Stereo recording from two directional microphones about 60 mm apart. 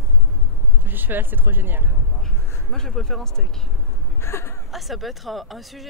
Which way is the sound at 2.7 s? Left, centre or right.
Centre.